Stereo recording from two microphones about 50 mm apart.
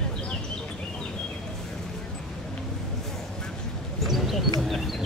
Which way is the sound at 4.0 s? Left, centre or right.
Centre.